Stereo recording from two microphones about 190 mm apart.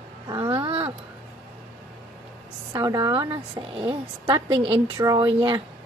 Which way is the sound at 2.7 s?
20° right (ahead or behind).